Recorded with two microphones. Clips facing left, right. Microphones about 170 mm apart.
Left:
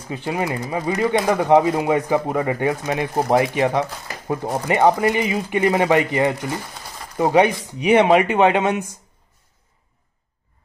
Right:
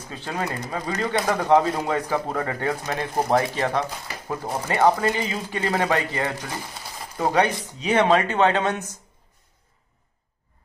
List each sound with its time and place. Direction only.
0.1 s speech: 15° left (ahead or behind)